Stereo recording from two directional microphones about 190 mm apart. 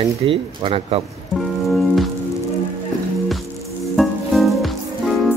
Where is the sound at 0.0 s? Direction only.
30° right (ahead or behind).